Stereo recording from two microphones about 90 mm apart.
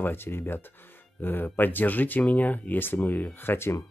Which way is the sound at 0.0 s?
25° left (ahead or behind).